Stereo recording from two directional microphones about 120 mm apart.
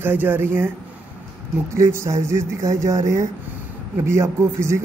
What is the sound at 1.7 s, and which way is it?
A man's voice, 25° right (ahead or behind).